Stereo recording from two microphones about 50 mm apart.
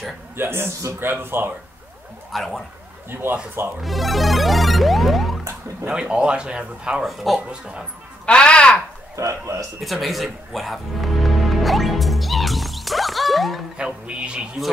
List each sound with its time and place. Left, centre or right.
0.4 s a man's voice: right
2.3 s music: centre
3.1 s speech: right
3.8 s music: centre
5.9 s speech: centre
7.1 s music: centre
8.3 s a sound: centre
9.1 s a man's voice: right
9.8 s music: centre
13.7 s speech: centre